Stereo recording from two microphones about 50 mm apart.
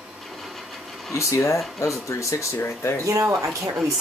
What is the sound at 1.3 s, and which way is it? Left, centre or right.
Speech, left.